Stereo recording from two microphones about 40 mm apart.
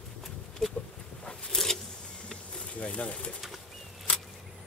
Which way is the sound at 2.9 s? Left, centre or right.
Left.